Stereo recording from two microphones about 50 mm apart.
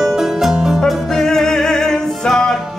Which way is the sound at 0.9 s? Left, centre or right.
Centre.